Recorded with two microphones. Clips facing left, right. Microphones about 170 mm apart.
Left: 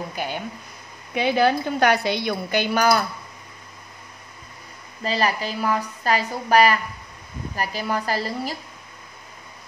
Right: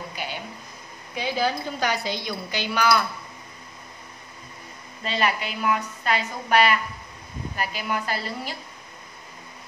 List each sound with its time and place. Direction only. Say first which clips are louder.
0.1 s a sound: left 5 dB; 50° left (ahead or behind)
1.1 s a woman's voice: left 6 dB; 60° left (ahead or behind); by 3.1 s 45° left (ahead or behind)
5.0 s a woman's voice: left 2 dB; 35° left (ahead or behind)